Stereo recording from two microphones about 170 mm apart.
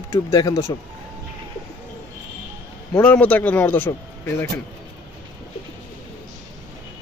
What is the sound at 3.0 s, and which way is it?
Speech, 10° left (ahead or behind).